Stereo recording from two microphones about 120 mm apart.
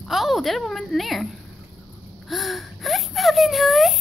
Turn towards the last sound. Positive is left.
turn(degrees=0)  # may be behind; listen again after turning